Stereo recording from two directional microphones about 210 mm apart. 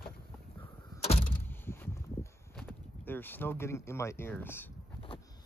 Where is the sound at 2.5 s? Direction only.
10° left (ahead or behind).